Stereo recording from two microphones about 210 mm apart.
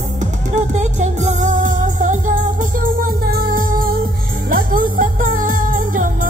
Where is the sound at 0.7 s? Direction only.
35° right (ahead or behind).